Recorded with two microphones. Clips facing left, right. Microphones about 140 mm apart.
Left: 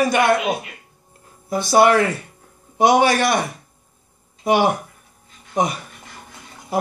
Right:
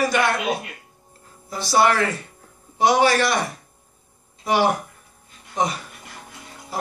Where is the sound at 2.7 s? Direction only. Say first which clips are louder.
Left 2 dB; 55° left (ahead or behind).